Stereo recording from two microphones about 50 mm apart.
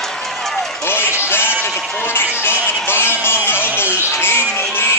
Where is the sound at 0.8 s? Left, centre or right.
Left.